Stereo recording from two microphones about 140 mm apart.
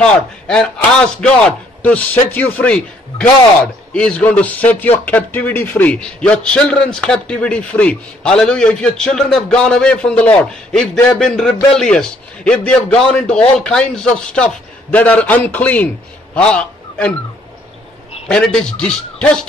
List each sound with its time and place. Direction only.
0.0 s a man's voice: 5° left (ahead or behind)
1.8 s a man's voice: 10° left (ahead or behind)
18.3 s a man's voice: 5° left (ahead or behind)